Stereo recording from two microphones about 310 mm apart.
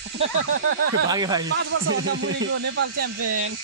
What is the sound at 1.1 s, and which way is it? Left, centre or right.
Speech, centre.